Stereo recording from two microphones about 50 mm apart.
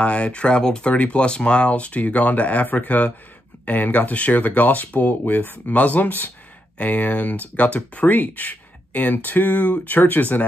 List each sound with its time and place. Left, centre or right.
0.0 s speech: left